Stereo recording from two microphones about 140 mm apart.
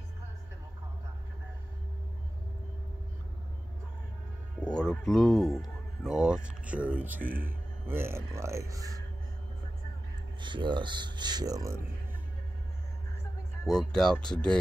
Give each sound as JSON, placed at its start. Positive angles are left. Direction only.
{"t": 4.6, "sound": "speech", "side_deg": 5}
{"t": 10.4, "sound": "speech", "side_deg": -35}
{"t": 13.7, "sound": "speech", "side_deg": 5}